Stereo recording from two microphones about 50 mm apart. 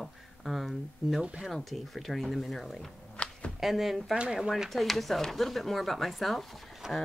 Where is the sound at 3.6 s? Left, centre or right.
Centre.